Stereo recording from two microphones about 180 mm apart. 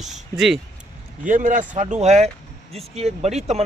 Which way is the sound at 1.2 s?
45° right (ahead or behind).